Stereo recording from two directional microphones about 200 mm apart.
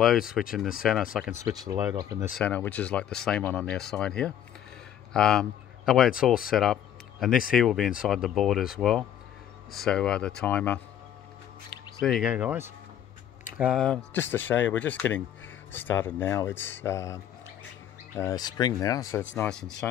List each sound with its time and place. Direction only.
0.0 s speech: centre (ahead or behind)
1.4 s speech: 15° right (ahead or behind)
2.3 s speech: 10° left (ahead or behind)
12.0 s speech: centre (ahead or behind)